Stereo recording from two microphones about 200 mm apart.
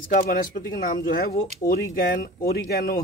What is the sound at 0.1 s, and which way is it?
Speech, 50° left (ahead or behind).